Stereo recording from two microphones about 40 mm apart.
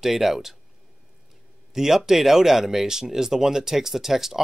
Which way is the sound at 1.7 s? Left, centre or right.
Centre.